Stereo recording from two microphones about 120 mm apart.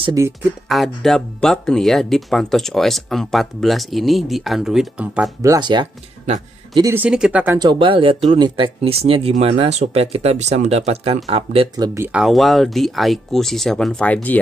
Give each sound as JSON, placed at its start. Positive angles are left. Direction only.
{"t": 0.2, "sound": "speech", "side_deg": -25}
{"t": 0.7, "sound": "speech", "side_deg": 0}
{"t": 5.6, "sound": "speech", "side_deg": -40}
{"t": 7.1, "sound": "speech", "side_deg": -5}
{"t": 7.5, "sound": "speech", "side_deg": -40}
{"t": 11.7, "sound": "speech", "side_deg": -35}
{"t": 12.1, "sound": "speech", "side_deg": -5}